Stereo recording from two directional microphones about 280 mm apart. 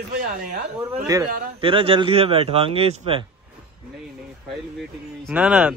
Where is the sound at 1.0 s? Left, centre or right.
Centre.